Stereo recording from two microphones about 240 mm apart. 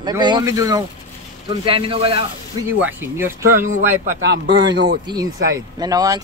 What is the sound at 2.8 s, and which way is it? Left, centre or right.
Speech, centre.